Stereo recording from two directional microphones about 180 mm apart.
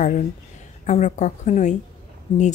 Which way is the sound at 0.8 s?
40° left (ahead or behind).